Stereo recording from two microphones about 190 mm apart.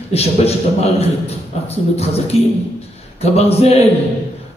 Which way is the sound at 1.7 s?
35° left (ahead or behind).